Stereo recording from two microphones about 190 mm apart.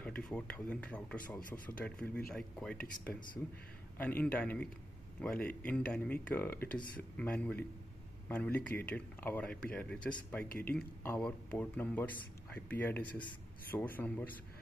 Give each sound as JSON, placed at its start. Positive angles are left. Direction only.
{"t": 0.0, "sound": "speech", "side_deg": 5}